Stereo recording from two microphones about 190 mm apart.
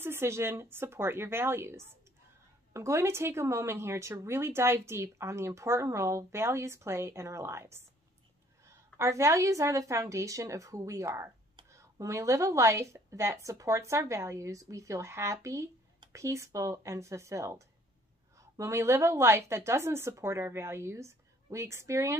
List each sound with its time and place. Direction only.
0.0 s a woman's voice: 10° right (ahead or behind)